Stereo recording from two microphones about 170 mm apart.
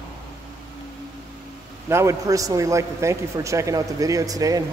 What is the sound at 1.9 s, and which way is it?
A man's voice, 15° right (ahead or behind).